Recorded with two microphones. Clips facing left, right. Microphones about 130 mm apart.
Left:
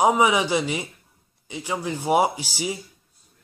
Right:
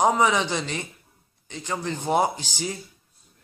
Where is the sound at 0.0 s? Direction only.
10° left (ahead or behind).